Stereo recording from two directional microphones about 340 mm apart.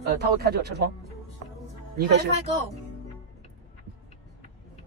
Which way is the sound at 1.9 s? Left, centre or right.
Right.